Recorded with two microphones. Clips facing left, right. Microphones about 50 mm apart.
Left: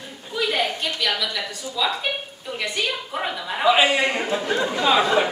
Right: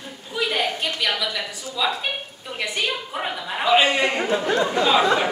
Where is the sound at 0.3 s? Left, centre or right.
Centre.